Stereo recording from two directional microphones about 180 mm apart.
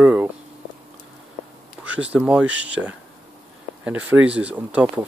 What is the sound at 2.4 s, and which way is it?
Speech, 90° right.